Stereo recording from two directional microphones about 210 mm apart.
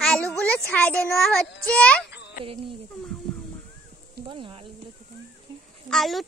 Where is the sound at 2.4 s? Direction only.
25° right (ahead or behind).